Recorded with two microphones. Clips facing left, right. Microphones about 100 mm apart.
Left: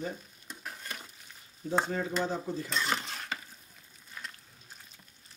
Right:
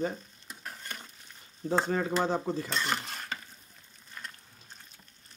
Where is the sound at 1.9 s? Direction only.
75° right (ahead or behind).